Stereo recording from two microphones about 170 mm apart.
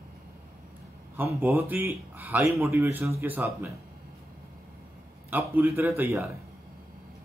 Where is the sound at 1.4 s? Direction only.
10° right (ahead or behind).